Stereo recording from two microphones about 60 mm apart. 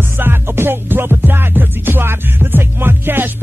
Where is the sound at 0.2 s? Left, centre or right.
Right.